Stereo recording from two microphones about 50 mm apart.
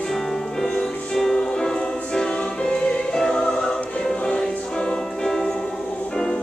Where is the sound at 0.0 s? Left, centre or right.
Centre.